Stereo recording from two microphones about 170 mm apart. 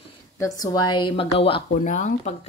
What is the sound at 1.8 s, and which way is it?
Speech, 45° left (ahead or behind).